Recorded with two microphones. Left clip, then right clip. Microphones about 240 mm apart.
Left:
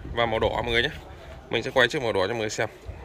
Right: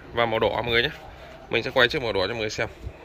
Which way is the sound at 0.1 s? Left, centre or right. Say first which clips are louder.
Right 2 dB; centre.